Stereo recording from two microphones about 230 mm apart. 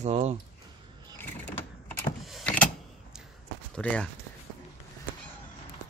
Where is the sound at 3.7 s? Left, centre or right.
Centre.